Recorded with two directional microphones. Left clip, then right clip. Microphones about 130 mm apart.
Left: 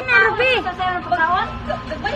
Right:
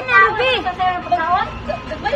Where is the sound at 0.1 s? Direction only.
5° left (ahead or behind).